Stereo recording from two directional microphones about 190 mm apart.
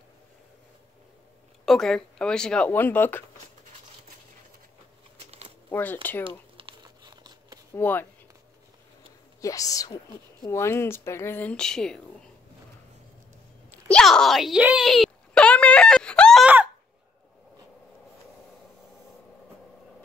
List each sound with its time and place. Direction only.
1.7 s speech: 5° left (ahead or behind)
5.7 s speech: 10° left (ahead or behind)
6.5 s crumpling: 25° right (ahead or behind)
7.7 s speech: 10° left (ahead or behind)
9.4 s speech: 15° left (ahead or behind)
13.7 s a sound: 5° left (ahead or behind)